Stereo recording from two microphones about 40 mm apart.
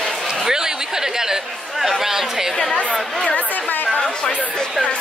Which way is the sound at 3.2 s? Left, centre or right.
Left.